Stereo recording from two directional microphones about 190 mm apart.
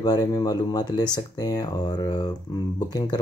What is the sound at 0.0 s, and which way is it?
Speech, 20° left (ahead or behind).